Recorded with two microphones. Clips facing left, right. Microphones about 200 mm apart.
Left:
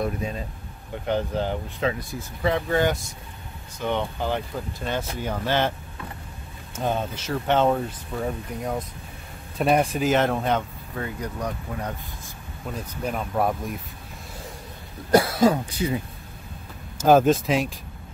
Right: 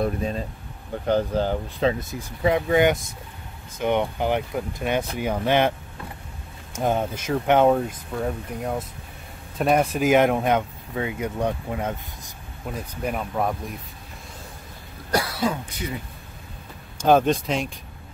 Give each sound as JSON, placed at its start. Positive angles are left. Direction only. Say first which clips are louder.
{"t": 0.0, "sound": "speech", "louder": "right 3 dB", "side_deg": -30}
{"t": 6.8, "sound": "speech", "louder": "right 3 dB", "side_deg": -15}
{"t": 12.7, "sound": "speech", "louder": "right 1 dB", "side_deg": -5}
{"t": 15.0, "sound": "cough", "louder": "left 6 dB", "side_deg": 25}
{"t": 15.3, "sound": "speech", "louder": "left 6 dB", "side_deg": 45}
{"t": 17.0, "sound": "speech", "louder": "left 1 dB", "side_deg": 5}